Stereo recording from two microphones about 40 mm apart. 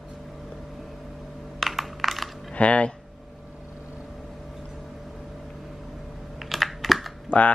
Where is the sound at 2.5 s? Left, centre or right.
Left.